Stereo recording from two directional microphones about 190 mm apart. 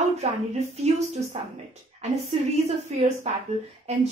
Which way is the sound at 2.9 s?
35° right (ahead or behind).